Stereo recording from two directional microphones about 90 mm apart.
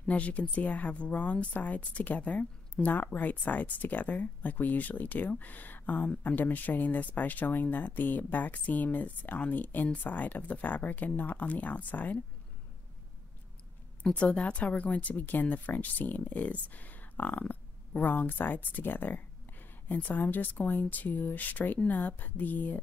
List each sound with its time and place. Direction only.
0.0 s speech: 15° left (ahead or behind)
14.0 s speech: 15° left (ahead or behind)